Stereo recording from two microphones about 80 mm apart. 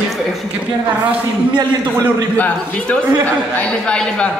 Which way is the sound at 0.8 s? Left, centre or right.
Centre.